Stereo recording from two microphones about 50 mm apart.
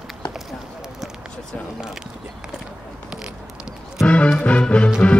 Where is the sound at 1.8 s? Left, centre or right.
Centre.